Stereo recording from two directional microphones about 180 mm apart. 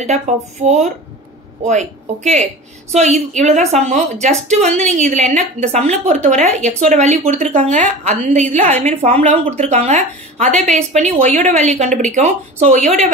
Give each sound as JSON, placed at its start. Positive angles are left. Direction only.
{"t": 0.7, "sound": "a woman's voice", "side_deg": -40}
{"t": 11.2, "sound": "a woman's voice", "side_deg": 10}
{"t": 11.5, "sound": "a woman's voice", "side_deg": -40}